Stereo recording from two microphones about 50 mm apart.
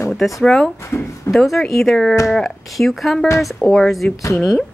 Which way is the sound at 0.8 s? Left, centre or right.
Left.